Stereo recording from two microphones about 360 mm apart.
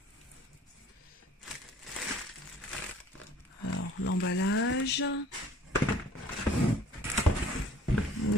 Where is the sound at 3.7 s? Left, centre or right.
Left.